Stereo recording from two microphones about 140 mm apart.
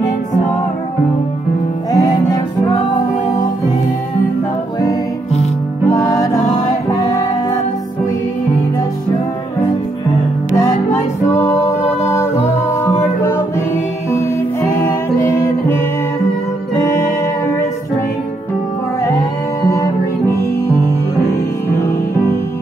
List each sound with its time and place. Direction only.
1.9 s music: 25° left (ahead or behind)
5.3 s music: 50° left (ahead or behind)
5.9 s music: 25° left (ahead or behind)
10.5 s music: 20° left (ahead or behind)
15.2 s music: 20° left (ahead or behind)
16.7 s music: 25° left (ahead or behind)
19.6 s music: 25° left (ahead or behind)